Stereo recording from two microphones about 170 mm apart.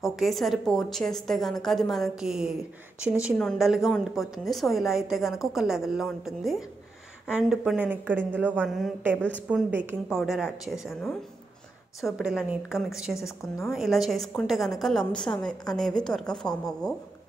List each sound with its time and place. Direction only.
0.1 s a woman's voice: centre (ahead or behind)